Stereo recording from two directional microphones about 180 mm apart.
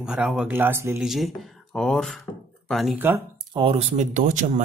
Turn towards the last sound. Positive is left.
turn(degrees=-45)  # may be behind; listen again after turning